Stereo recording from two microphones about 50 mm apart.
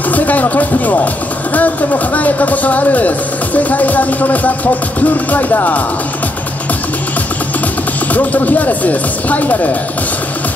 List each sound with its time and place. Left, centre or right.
0.1 s music: left
1.5 s speech: left
8.1 s speech: left